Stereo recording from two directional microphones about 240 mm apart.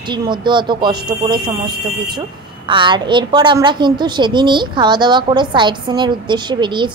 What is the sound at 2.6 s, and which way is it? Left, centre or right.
A woman's voice, centre.